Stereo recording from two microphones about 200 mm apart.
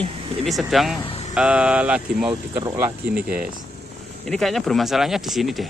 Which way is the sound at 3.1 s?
5° right (ahead or behind).